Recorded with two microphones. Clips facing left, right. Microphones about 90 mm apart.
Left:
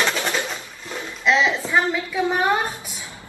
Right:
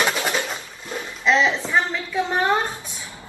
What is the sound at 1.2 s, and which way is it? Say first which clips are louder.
Speech: even; centre (ahead or behind).